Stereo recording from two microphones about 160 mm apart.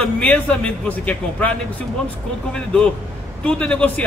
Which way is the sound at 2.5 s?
5° left (ahead or behind).